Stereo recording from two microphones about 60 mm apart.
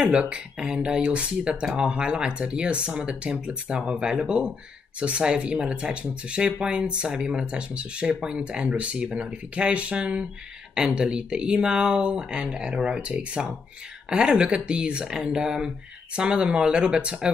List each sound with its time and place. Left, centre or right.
0.0 s speech: centre